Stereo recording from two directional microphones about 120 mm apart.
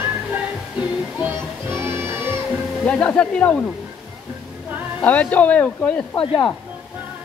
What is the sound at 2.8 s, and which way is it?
Speech, 10° left (ahead or behind).